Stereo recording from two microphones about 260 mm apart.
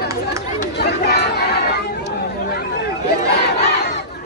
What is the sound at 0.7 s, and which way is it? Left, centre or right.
Chatter, left.